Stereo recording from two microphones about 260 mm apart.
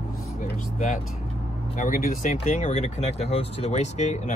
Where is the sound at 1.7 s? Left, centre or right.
Left.